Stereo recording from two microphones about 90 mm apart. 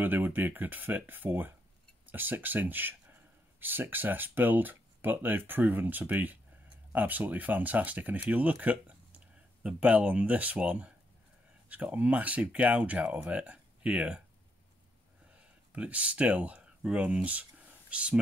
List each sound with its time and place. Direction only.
0.0 s speech: 20° right (ahead or behind)
15.7 s speech: 15° right (ahead or behind)